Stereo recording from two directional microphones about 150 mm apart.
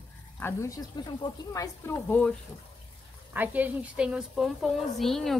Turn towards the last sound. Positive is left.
turn(degrees=0)  # may be behind; listen again after turning